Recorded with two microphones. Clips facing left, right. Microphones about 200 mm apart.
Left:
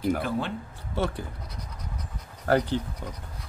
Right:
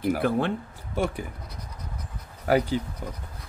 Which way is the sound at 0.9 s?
15° right (ahead or behind).